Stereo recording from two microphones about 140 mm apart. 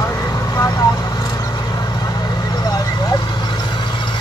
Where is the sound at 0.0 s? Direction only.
20° left (ahead or behind).